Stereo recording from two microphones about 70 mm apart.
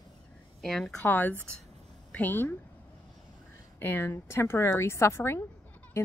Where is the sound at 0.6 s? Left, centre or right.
Centre.